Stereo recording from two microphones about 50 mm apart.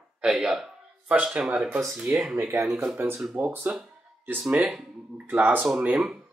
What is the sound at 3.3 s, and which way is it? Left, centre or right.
Speech, right.